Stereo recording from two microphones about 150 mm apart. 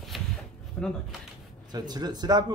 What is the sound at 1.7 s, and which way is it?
Speech, 25° right (ahead or behind).